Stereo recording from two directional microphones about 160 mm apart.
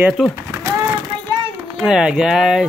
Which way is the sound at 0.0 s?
Centre (ahead or behind).